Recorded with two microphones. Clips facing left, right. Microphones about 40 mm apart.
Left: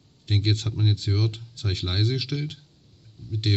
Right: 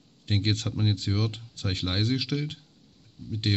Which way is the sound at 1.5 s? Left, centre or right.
Right.